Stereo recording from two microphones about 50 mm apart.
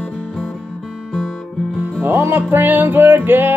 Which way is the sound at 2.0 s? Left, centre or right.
Right.